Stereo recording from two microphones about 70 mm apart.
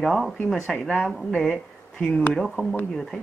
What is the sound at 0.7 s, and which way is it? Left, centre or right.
Speech, centre.